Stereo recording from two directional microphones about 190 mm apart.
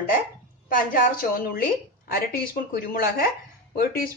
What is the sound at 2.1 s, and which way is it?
A woman's voice, 50° left (ahead or behind).